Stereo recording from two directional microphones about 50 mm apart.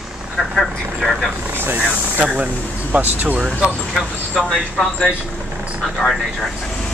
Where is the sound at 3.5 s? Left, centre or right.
Centre.